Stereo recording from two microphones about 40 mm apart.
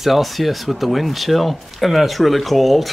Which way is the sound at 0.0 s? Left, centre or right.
Centre.